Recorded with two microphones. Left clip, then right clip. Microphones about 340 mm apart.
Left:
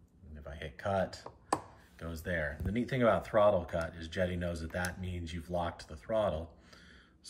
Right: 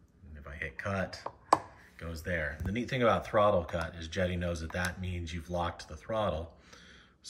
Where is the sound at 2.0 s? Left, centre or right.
Centre.